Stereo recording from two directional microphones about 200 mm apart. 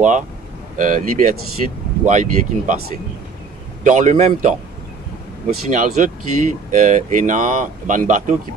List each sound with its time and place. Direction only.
0.7 s speech: 40° right (ahead or behind)
3.8 s speech: 40° right (ahead or behind)